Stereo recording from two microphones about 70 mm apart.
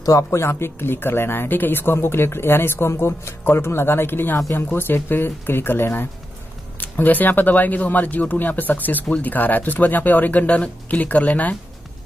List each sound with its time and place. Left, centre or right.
0.3 s speech: left